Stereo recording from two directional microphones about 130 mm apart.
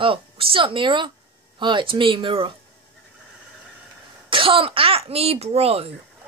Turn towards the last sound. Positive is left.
turn(degrees=-50)  # may be behind; listen again after turning